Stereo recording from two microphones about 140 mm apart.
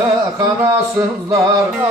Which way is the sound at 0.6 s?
20° right (ahead or behind).